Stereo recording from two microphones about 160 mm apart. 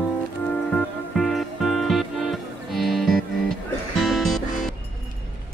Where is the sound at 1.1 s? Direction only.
Centre (ahead or behind).